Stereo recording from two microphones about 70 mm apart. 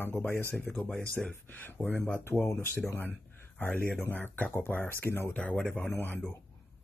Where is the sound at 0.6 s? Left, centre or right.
Centre.